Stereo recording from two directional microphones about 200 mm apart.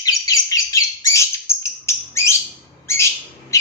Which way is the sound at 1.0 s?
15° left (ahead or behind).